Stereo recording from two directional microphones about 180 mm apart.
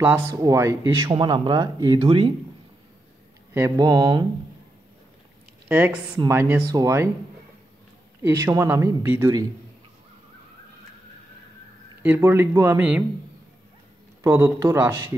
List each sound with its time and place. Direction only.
0.3 s speech: 15° right (ahead or behind)
3.5 s speech: 20° right (ahead or behind)
5.7 s speech: 10° right (ahead or behind)
8.2 s speech: 15° right (ahead or behind)
12.0 s speech: 15° right (ahead or behind)
14.2 s speech: 15° right (ahead or behind)